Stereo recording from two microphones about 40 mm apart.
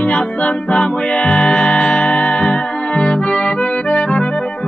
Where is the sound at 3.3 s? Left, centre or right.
Left.